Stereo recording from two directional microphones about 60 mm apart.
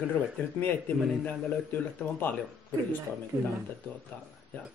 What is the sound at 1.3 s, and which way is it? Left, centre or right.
A man's voice, left.